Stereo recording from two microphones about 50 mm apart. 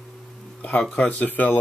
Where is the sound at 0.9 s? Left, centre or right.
Left.